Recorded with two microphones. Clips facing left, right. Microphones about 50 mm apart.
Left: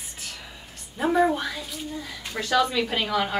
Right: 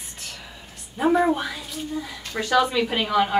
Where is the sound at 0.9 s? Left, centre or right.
Centre.